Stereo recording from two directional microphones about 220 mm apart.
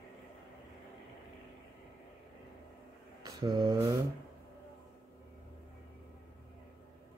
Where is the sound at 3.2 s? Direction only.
15° right (ahead or behind).